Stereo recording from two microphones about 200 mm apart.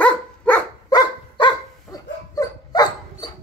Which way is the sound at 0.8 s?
20° left (ahead or behind).